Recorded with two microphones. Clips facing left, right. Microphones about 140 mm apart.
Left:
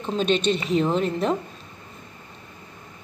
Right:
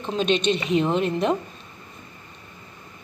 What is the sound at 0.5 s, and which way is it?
Speech, 40° left (ahead or behind).